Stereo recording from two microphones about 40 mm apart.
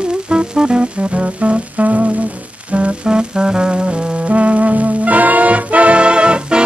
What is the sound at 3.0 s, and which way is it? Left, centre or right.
Music, right.